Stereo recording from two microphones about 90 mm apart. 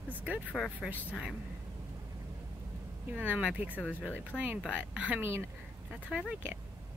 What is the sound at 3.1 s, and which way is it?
Speech, 15° right (ahead or behind).